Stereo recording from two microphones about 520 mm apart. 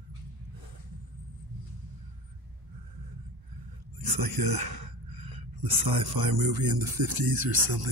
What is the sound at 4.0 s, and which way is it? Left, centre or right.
Speech, right.